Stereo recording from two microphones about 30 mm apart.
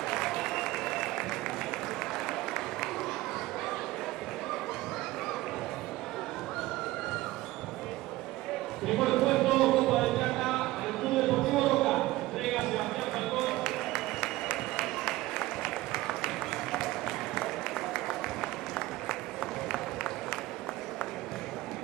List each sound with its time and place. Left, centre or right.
0.1 s applause: centre
8.8 s a sound: centre
14.8 s applause: centre
17.9 s applause: centre
19.7 s crowd: centre